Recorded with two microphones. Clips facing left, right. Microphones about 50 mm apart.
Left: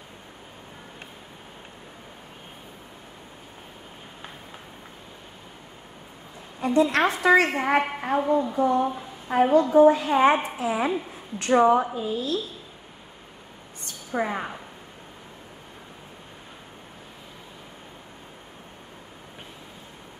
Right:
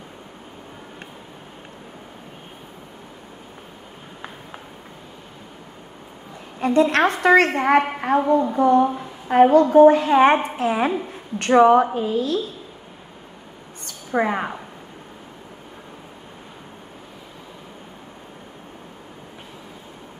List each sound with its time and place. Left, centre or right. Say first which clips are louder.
6.6 s a woman's voice: right 4 dB; right
7.6 s a woman's voice: right 5 dB; right
11.5 s a woman's voice: right 5 dB; right
14.2 s speech: right 6 dB; right